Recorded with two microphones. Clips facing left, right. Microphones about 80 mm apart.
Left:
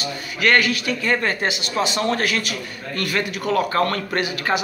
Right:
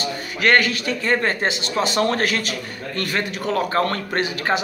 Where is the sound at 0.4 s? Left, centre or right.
Right.